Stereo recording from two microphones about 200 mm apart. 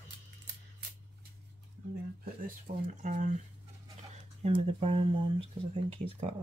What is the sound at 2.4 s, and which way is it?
Speech, 40° right (ahead or behind).